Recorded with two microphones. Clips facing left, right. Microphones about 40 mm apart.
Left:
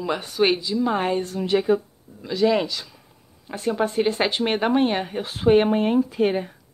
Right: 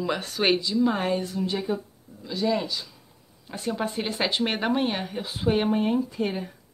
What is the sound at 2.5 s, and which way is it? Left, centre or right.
Speech, left.